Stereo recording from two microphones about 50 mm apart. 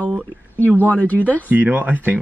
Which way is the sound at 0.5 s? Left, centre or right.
Left.